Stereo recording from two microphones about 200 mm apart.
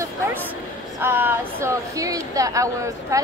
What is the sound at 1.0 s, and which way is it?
Speech, 10° right (ahead or behind).